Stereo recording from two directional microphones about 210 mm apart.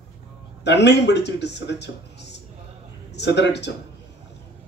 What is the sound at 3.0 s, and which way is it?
Speech, 55° left (ahead or behind).